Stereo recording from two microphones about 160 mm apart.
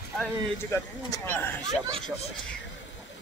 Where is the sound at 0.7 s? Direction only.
15° left (ahead or behind).